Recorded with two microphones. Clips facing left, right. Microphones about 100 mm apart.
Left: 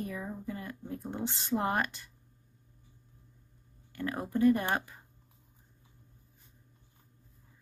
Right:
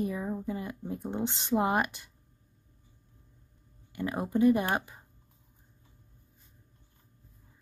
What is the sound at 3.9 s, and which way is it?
A woman's voice, 15° right (ahead or behind).